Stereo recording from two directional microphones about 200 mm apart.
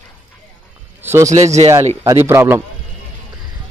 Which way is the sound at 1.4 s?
35° right (ahead or behind).